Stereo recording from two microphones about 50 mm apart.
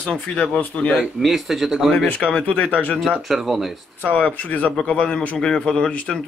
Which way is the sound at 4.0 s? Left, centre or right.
Left.